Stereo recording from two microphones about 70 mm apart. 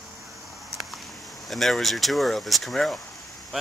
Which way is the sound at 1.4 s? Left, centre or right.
Centre.